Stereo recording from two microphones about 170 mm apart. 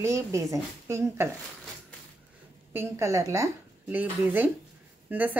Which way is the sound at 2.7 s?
15° right (ahead or behind).